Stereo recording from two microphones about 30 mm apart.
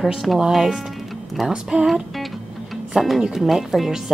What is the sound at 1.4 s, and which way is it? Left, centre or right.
Speech, centre.